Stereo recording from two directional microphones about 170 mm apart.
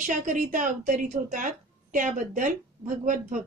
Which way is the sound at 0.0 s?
50° right (ahead or behind).